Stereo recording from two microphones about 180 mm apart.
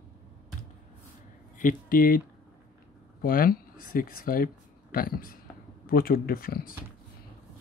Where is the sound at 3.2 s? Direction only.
55° left (ahead or behind).